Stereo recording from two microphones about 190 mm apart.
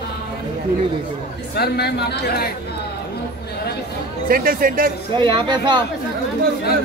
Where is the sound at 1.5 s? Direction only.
60° left (ahead or behind).